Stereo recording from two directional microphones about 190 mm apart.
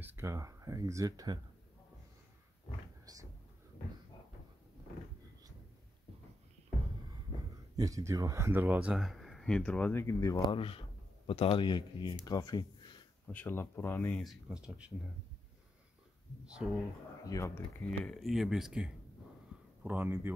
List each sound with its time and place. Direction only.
0.0 s speech: 10° right (ahead or behind)
3.1 s speech: 20° right (ahead or behind)
7.7 s speech: 20° right (ahead or behind); by 10.3 s 15° left (ahead or behind)
10.3 s speech: 25° left (ahead or behind)
13.3 s speech: 10° left (ahead or behind)
16.4 s speech: 5° right (ahead or behind)
17.2 s speech: 15° left (ahead or behind); by 20.3 s 10° right (ahead or behind)